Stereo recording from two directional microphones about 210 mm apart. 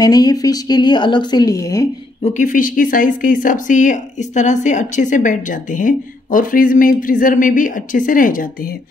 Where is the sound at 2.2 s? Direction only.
35° left (ahead or behind).